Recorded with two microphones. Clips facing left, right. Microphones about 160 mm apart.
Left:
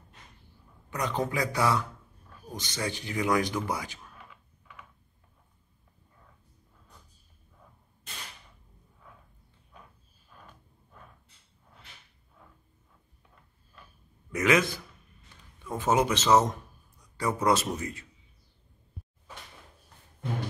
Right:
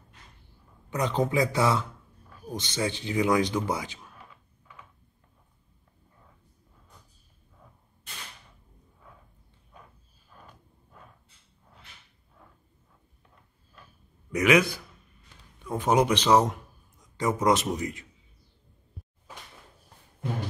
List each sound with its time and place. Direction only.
0.8 s speech: 20° right (ahead or behind)
14.3 s speech: 15° right (ahead or behind)
15.8 s a man's voice: 15° right (ahead or behind)